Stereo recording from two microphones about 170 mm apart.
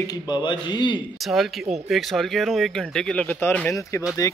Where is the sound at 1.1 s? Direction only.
Centre (ahead or behind).